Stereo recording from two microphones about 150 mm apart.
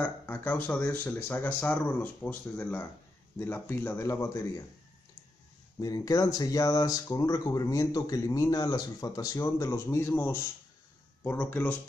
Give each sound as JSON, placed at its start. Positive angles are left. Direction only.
{"t": 0.0, "sound": "speech", "side_deg": 10}
{"t": 5.8, "sound": "speech", "side_deg": 25}